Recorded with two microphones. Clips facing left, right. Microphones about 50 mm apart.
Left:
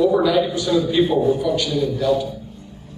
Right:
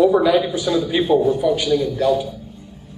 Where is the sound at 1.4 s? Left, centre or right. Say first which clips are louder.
Right 2 dB; centre.